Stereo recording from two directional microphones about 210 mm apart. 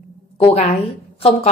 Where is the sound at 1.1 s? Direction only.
30° left (ahead or behind).